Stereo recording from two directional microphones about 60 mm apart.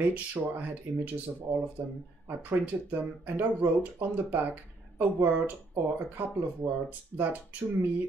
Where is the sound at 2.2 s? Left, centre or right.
Right.